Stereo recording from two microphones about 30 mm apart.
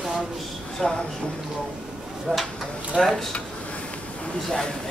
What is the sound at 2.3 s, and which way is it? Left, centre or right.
Speech, left.